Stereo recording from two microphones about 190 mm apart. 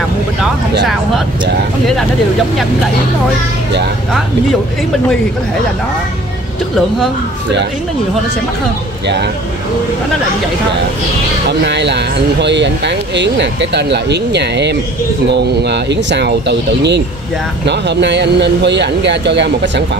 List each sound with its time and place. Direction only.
9.0 s speech: 65° right (ahead or behind)
11.6 s speech: 65° right (ahead or behind)